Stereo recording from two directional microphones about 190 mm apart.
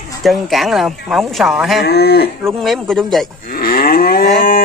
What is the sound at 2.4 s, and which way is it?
Speech, centre (ahead or behind).